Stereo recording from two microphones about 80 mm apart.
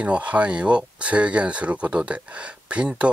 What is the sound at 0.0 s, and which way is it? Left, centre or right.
Speech, centre.